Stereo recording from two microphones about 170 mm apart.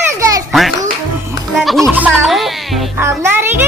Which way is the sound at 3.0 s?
15° right (ahead or behind).